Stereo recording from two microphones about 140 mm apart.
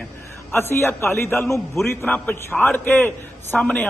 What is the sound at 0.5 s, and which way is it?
A man's voice, 15° left (ahead or behind).